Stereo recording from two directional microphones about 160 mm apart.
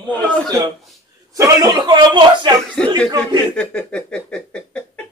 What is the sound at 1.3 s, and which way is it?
A man's voice, 20° right (ahead or behind).